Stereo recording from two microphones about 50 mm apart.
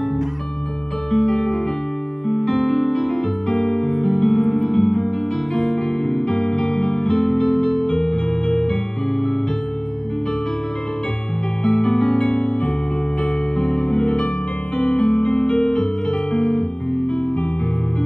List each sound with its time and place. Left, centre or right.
1.1 s music: centre
11.6 s music: centre